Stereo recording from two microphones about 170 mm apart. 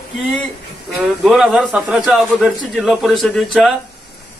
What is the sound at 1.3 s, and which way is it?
A man's voice, centre (ahead or behind).